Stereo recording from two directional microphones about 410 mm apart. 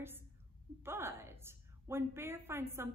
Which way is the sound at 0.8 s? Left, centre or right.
Centre.